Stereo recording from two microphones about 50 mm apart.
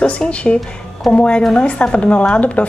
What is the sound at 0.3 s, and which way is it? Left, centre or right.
A woman's voice, left.